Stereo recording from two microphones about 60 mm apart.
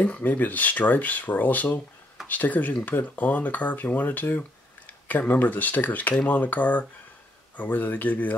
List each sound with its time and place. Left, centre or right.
0.0 s speech: left